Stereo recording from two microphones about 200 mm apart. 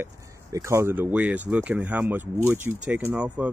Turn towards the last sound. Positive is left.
turn(degrees=-5)  # may be behind; listen again after turning